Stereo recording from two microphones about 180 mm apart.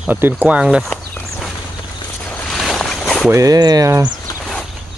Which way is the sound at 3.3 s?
20° right (ahead or behind).